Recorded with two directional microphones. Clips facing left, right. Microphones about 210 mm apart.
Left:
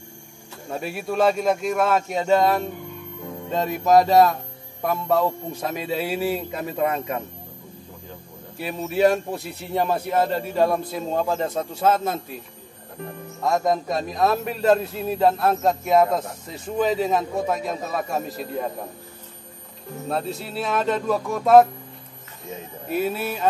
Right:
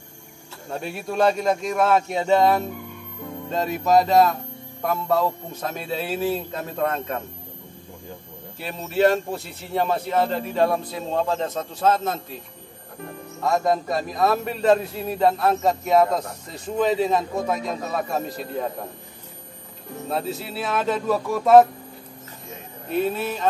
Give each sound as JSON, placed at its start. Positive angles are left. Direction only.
{"t": 0.7, "sound": "a man's voice", "side_deg": 0}
{"t": 3.5, "sound": "a man's voice", "side_deg": 0}
{"t": 8.6, "sound": "a man's voice", "side_deg": 5}
{"t": 13.4, "sound": "a man's voice", "side_deg": 0}
{"t": 20.1, "sound": "a man's voice", "side_deg": 0}
{"t": 22.8, "sound": "a man's voice", "side_deg": 5}